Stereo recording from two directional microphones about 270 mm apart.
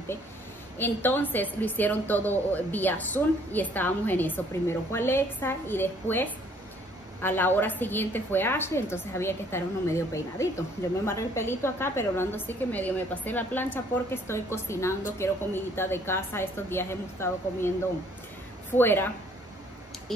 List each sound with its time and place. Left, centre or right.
0.7 s a woman's voice: centre
18.8 s a woman's voice: centre